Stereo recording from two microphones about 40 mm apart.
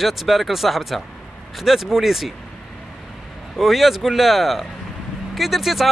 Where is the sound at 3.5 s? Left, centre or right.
Centre.